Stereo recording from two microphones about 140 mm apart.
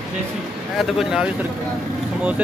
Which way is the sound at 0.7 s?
5° right (ahead or behind).